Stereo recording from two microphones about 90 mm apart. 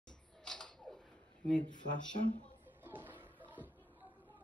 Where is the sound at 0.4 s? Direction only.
10° left (ahead or behind).